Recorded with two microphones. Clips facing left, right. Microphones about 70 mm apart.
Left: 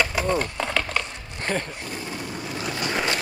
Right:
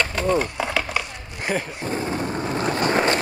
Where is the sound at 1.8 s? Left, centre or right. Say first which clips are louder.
Right 7 dB; right.